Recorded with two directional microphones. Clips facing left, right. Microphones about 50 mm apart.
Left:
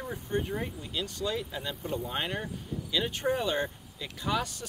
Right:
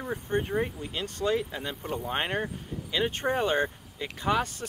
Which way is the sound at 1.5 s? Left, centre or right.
Right.